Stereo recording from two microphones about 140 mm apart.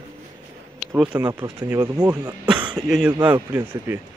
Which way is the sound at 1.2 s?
20° right (ahead or behind).